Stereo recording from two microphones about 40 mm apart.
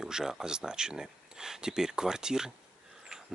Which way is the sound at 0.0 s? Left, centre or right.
Centre.